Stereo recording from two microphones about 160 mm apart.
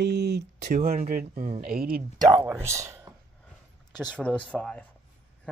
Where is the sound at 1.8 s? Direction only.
70° right (ahead or behind).